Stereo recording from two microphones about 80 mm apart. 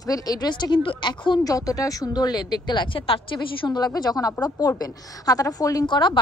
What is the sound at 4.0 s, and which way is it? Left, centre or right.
A woman's voice, left.